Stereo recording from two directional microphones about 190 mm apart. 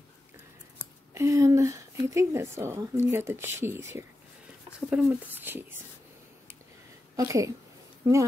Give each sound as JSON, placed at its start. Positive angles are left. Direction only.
{"t": 1.1, "sound": "a woman's voice", "side_deg": -15}
{"t": 7.2, "sound": "speech", "side_deg": -15}